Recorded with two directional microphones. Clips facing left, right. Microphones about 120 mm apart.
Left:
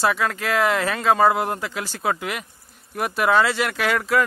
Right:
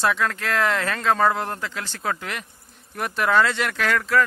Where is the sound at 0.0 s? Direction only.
5° left (ahead or behind).